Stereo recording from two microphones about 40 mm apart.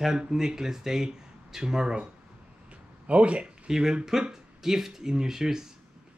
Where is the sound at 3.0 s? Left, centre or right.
Right.